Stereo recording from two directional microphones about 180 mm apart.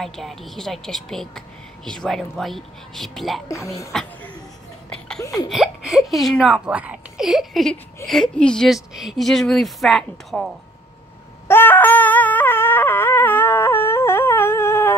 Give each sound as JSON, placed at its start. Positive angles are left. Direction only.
{"t": 0.0, "sound": "speech", "side_deg": 0}
{"t": 3.4, "sound": "speech", "side_deg": 15}
{"t": 3.9, "sound": "speech", "side_deg": 5}
{"t": 4.8, "sound": "a sound", "side_deg": 5}
{"t": 5.5, "sound": "speech", "side_deg": 0}
{"t": 11.4, "sound": "a sound", "side_deg": 10}